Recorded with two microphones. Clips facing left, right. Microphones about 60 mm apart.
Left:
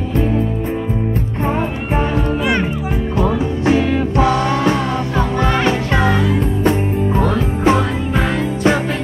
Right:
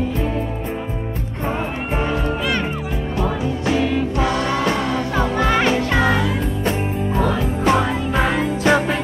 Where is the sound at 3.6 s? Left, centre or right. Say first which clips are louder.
Left 4 dB; left.